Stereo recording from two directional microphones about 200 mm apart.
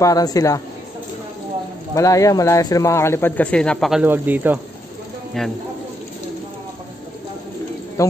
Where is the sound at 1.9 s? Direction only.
15° left (ahead or behind); by 4.6 s 10° right (ahead or behind).